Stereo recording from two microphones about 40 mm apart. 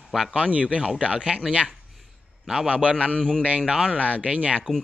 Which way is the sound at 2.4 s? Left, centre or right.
Centre.